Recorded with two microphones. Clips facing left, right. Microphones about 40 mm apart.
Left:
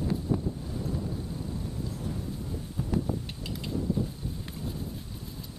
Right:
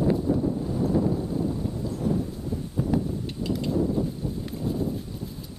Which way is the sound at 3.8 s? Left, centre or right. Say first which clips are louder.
Right 4 dB; right.